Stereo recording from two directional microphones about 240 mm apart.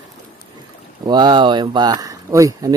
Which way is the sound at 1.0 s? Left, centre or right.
Centre.